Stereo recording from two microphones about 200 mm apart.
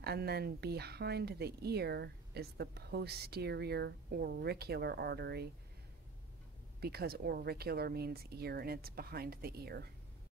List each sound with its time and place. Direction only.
0.0 s speech: 50° right (ahead or behind)
6.8 s speech: 50° right (ahead or behind)